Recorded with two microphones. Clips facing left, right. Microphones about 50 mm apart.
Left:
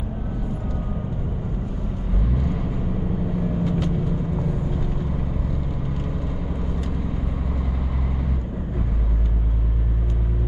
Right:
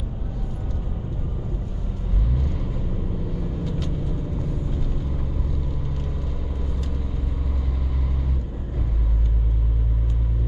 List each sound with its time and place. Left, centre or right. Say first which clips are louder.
3.6 s vehicle: left 5 dB; left